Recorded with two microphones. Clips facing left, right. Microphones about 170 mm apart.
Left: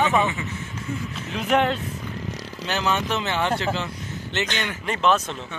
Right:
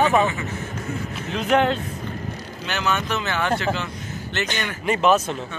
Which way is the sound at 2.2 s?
90° left.